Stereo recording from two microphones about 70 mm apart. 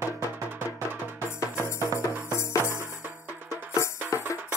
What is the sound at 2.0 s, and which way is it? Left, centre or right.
Music, left.